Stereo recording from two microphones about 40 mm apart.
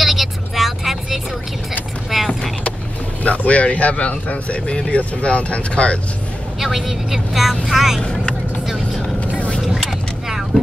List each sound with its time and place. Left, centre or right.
0.0 s vehicle: centre
3.3 s speech: left
6.6 s speech: centre
10.5 s vehicle: left